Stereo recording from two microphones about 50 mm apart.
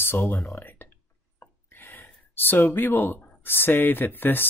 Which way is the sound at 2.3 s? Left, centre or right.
Left.